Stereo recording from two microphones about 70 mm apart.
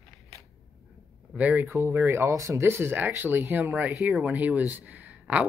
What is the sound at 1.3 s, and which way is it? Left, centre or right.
Speech, right.